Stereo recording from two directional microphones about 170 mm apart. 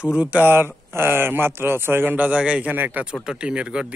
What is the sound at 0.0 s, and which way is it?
Speech, 10° right (ahead or behind).